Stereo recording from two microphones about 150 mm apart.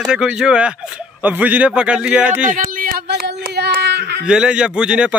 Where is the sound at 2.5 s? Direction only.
70° right (ahead or behind); by 4.2 s 90° right.